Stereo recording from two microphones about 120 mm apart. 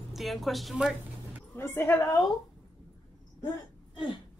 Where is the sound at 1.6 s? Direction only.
20° left (ahead or behind).